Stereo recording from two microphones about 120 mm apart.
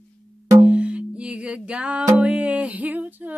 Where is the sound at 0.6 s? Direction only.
10° right (ahead or behind).